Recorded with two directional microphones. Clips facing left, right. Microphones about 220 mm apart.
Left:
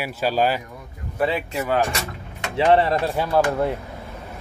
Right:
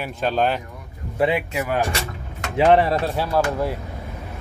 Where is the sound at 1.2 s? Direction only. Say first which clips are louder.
Right 2 dB; 10° right (ahead or behind).